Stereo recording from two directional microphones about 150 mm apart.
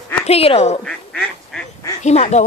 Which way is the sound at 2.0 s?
45° left (ahead or behind).